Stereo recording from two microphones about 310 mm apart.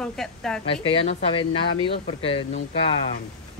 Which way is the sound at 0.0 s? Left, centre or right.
Centre.